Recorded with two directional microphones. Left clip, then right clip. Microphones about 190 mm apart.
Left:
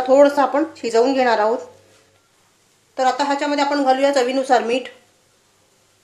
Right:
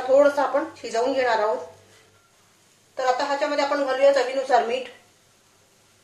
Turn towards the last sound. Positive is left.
turn(degrees=55)  # may be behind; listen again after turning